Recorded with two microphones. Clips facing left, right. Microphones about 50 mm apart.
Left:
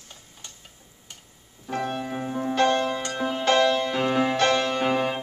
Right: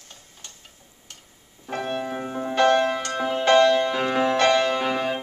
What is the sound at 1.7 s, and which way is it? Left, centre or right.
Speech, centre.